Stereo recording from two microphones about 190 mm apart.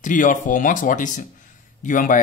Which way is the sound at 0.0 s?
45° left (ahead or behind).